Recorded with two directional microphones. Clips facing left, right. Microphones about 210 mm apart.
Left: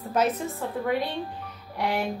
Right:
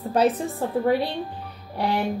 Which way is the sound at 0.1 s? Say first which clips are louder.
Right 4 dB; 30° right (ahead or behind).